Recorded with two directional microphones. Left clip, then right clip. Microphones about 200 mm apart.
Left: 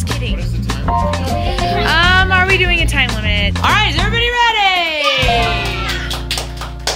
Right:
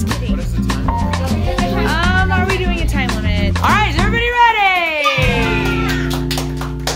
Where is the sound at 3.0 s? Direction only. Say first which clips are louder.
Left 5 dB; 15° right (ahead or behind).